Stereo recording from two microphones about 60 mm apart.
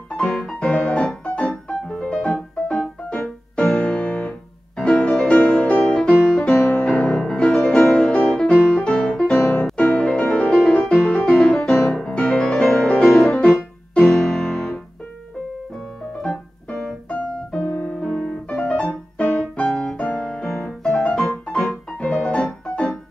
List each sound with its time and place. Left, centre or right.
0.2 s music: centre
7.5 s music: centre
13.0 s piano: centre
16.2 s piano: centre
17.7 s piano: centre
19.1 s music: left